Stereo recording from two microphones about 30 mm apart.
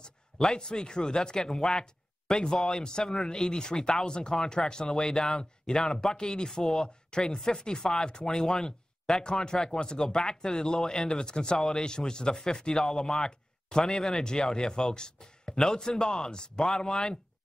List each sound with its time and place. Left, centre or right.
0.6 s speech: left